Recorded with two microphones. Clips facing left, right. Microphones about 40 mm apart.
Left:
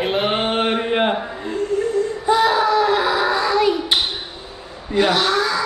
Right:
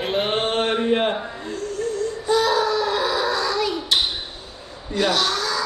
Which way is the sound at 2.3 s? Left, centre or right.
Left.